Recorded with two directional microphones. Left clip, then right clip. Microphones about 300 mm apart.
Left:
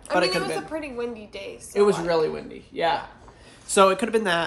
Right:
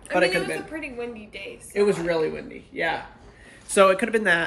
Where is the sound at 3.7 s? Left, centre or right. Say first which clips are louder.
Even; centre.